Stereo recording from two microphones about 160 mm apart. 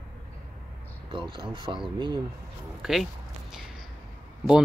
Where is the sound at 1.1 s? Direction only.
30° right (ahead or behind).